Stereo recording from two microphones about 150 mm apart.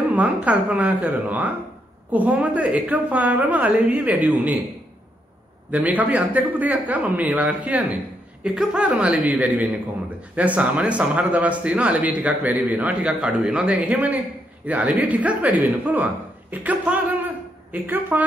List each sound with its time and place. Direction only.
0.1 s speech: 10° right (ahead or behind)
5.7 s speech: 10° right (ahead or behind)